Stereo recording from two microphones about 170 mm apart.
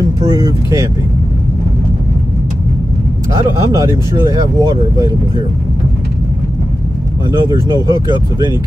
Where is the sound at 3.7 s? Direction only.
20° right (ahead or behind).